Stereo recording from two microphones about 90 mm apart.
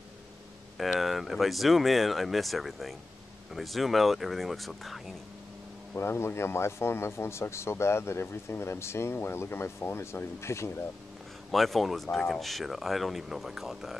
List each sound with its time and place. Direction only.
0.7 s speech: centre (ahead or behind)
5.9 s speech: 30° left (ahead or behind)
11.5 s speech: centre (ahead or behind)